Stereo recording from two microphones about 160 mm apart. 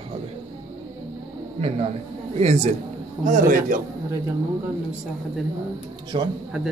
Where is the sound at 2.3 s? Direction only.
40° right (ahead or behind).